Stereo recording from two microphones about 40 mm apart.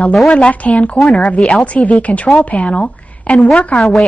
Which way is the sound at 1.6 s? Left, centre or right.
Left.